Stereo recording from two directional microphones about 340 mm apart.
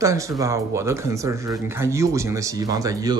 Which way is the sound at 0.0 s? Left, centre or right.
Centre.